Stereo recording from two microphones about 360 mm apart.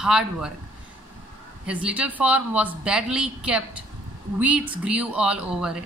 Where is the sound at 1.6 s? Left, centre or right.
Centre.